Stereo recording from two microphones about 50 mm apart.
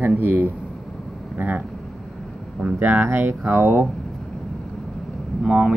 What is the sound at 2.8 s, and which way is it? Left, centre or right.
Speech, right.